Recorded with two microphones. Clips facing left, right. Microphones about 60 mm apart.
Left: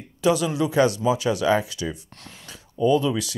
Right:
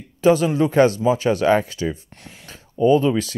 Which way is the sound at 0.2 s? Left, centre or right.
Right.